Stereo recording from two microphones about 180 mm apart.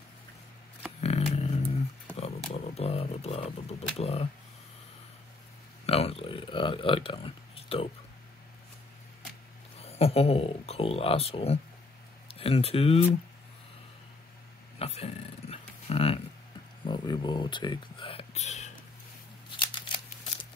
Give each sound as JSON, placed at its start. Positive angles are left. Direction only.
{"t": 1.0, "sound": "a sound", "side_deg": 35}
{"t": 2.5, "sound": "speech", "side_deg": 35}
{"t": 5.9, "sound": "speech", "side_deg": 35}
{"t": 9.8, "sound": "speech", "side_deg": 35}
{"t": 14.8, "sound": "a sound", "side_deg": 35}
{"t": 16.8, "sound": "speech", "side_deg": 25}
{"t": 19.6, "sound": "scissors", "side_deg": 25}